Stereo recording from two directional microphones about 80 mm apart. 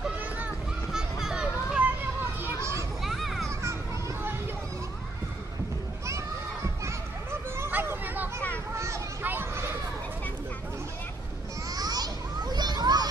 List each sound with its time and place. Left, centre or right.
0.9 s children playing: centre
2.4 s children playing: right
3.0 s children playing: centre
6.0 s a sound: right
8.7 s a sound: right
9.2 s children playing: right
11.7 s children playing: right